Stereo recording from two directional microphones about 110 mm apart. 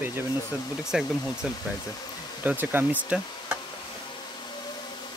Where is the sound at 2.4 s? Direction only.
15° right (ahead or behind).